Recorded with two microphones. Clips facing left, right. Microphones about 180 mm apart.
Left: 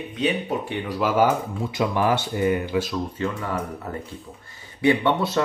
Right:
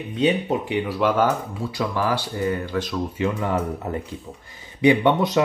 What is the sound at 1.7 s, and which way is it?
Speech, 20° left (ahead or behind).